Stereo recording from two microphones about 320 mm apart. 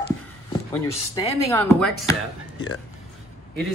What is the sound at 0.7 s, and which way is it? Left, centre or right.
Speech, centre.